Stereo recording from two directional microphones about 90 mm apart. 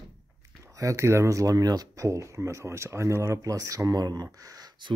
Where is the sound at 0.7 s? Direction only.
35° right (ahead or behind).